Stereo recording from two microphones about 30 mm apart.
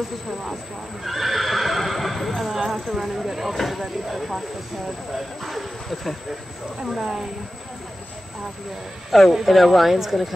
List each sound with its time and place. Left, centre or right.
1.0 s neigh: centre
3.5 s speech: centre
6.9 s speech: centre
9.1 s speech: centre